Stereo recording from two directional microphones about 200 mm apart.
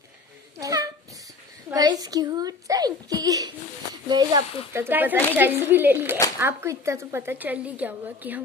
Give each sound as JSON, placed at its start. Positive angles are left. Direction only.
{"t": 0.6, "sound": "a sound", "side_deg": -15}
{"t": 1.7, "sound": "a child's voice", "side_deg": -20}
{"t": 4.7, "sound": "speech", "side_deg": -10}